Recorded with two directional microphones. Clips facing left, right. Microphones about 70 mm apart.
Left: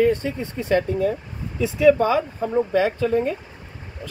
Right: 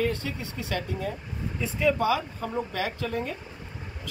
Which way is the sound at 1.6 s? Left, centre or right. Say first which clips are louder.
Left 10 dB; left.